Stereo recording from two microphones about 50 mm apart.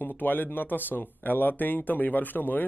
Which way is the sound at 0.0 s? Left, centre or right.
Left.